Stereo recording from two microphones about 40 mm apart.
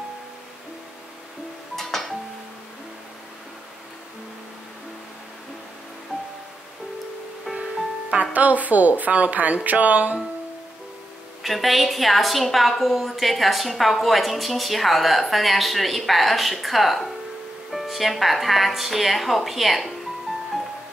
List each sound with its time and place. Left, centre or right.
1.8 s music: centre
8.1 s a woman's voice: right
11.4 s a woman's voice: centre